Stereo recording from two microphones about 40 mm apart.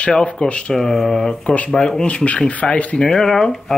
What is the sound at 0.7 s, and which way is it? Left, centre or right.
Speech, centre.